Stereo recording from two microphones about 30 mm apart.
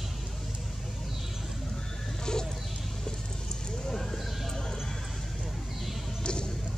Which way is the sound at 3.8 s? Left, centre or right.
Centre.